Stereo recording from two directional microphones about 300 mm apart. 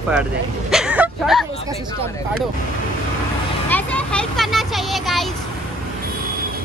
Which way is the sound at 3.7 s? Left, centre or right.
Centre.